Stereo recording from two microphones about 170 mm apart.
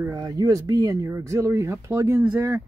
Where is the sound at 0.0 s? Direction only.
20° right (ahead or behind).